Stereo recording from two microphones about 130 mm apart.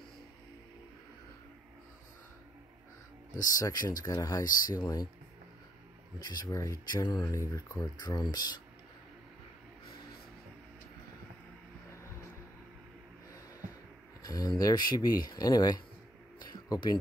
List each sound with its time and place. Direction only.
3.5 s speech: 25° left (ahead or behind)
6.1 s speech: 30° left (ahead or behind)
14.2 s speech: 30° left (ahead or behind)
16.3 s a sound: 30° left (ahead or behind)